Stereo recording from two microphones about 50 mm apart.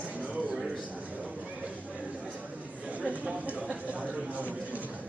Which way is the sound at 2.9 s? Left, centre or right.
Right.